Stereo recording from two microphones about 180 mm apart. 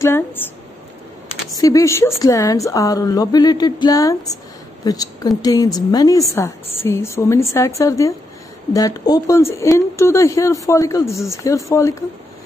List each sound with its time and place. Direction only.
0.0 s speech: 15° left (ahead or behind)
1.6 s speech: 20° left (ahead or behind)